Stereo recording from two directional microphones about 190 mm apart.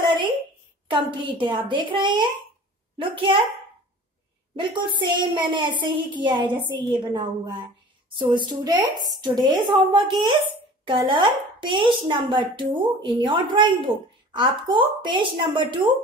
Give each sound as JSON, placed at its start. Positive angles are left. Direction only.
{"t": 0.0, "sound": "a sound", "side_deg": -25}
{"t": 0.8, "sound": "speech", "side_deg": -25}
{"t": 4.6, "sound": "speech", "side_deg": -25}